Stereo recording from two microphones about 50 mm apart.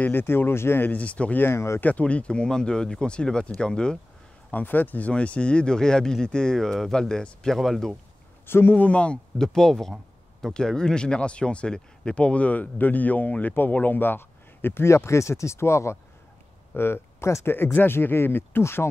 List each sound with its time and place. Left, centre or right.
0.0 s speech: left
0.8 s speech: left
1.4 s speech: left
1.8 s speech: left
4.5 s speech: left; by 7.9 s centre
8.5 s speech: left
8.7 s speech: left
9.4 s speech: centre; by 16.0 s left
16.7 s speech: left